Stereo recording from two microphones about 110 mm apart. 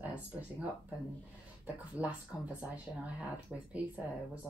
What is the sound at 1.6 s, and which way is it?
Speech, 15° right (ahead or behind).